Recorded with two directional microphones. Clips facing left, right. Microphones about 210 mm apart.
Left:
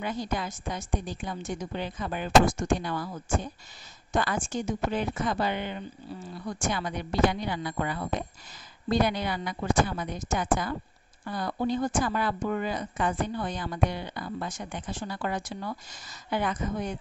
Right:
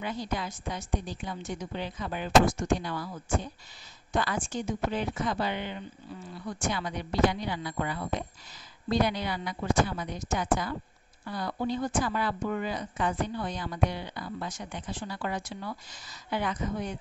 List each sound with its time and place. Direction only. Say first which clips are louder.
0.0 s speech: left 2 dB; 45° left (ahead or behind)